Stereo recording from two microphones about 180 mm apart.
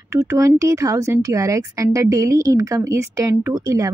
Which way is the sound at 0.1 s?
15° right (ahead or behind).